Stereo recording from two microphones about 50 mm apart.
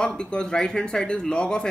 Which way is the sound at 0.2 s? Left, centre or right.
Centre.